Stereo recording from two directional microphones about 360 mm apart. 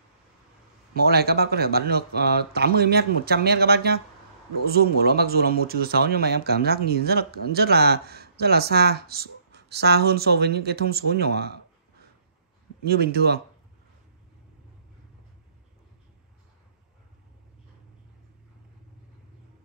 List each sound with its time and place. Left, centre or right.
0.9 s speech: right
12.8 s speech: right